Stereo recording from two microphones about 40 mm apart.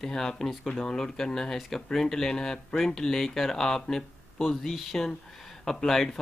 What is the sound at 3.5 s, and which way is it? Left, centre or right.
Speech, centre.